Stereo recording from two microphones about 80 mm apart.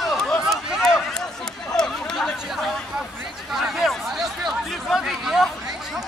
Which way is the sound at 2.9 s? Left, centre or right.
Centre.